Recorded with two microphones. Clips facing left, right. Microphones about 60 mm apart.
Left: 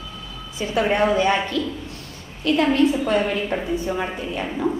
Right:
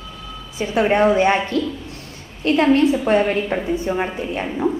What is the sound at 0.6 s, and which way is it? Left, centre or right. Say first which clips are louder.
A woman's voice: right 3 dB; right.